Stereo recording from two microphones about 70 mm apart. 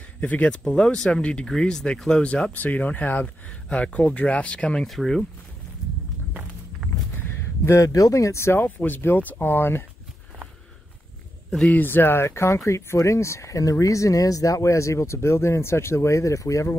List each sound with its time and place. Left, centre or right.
0.2 s speech: left
4.8 s speech: centre
7.2 s a sound: left
7.7 s speech: left
8.5 s speech: left
11.7 s speech: left